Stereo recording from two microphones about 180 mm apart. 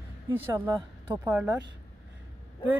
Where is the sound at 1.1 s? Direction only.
10° right (ahead or behind).